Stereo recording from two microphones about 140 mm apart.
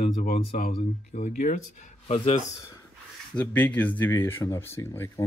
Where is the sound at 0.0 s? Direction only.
80° left.